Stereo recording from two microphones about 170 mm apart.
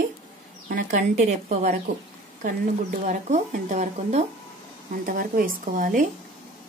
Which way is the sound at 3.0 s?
45° right (ahead or behind).